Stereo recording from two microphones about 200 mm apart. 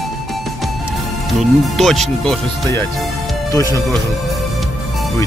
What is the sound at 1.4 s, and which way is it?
Speech, centre (ahead or behind).